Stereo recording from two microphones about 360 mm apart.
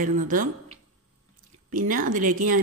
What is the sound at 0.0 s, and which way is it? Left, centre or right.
Speech, right.